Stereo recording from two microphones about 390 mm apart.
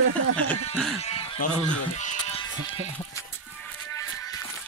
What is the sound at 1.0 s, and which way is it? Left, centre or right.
Music, centre.